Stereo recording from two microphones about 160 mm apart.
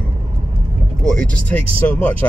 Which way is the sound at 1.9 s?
10° left (ahead or behind).